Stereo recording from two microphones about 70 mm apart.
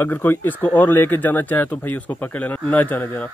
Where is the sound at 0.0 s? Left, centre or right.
Left.